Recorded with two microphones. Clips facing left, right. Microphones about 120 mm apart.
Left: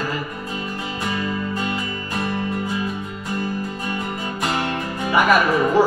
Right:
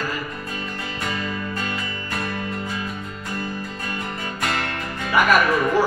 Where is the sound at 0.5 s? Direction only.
15° left (ahead or behind).